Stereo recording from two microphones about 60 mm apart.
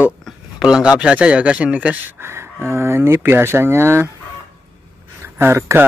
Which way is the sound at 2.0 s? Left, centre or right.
Right.